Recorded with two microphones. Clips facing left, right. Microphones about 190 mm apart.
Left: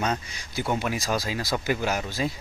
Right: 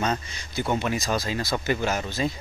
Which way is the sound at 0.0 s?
10° left (ahead or behind).